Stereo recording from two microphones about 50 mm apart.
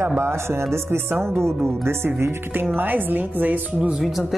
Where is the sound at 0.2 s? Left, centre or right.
Right.